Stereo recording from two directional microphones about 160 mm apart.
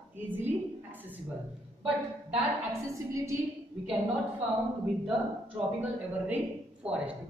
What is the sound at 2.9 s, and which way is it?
Speech, 20° right (ahead or behind).